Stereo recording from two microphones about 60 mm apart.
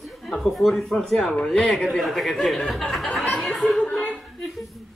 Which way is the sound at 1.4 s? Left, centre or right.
Centre.